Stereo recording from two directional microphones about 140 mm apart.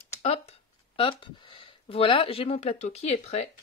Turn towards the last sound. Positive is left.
turn(degrees=50)  # may be behind; listen again after turning